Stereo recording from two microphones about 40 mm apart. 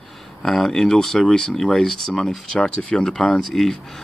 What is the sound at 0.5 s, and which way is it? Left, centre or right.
Speech, centre.